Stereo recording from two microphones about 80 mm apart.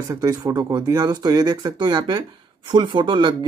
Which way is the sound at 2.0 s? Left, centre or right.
Right.